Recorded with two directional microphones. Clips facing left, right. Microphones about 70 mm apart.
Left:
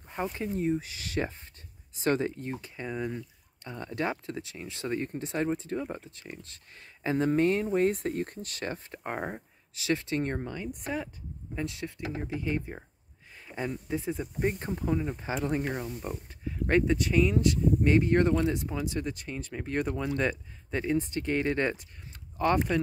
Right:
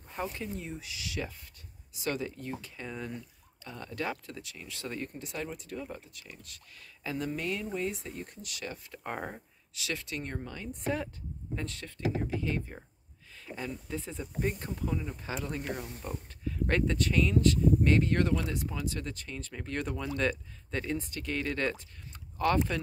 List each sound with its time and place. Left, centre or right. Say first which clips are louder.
0.1 s speech: left 4 dB; left
2.6 s speech: left 6 dB; left
9.0 s speech: left 3 dB; centre
10.4 s speech: left 1 dB; centre